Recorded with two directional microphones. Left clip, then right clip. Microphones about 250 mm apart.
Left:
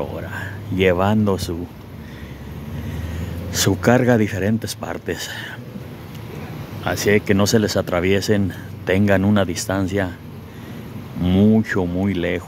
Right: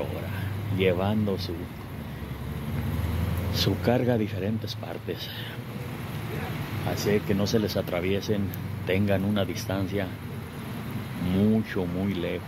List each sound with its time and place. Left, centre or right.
0.7 s speech: left
3.5 s speech: left
6.9 s speech: left
11.3 s speech: left